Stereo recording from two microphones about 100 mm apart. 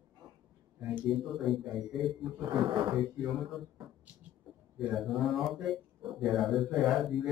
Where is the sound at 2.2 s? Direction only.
55° right (ahead or behind).